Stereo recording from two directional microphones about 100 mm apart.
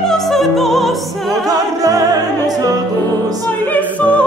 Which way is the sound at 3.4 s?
15° left (ahead or behind).